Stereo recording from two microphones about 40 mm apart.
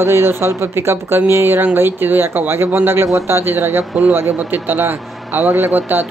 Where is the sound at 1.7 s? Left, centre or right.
Right.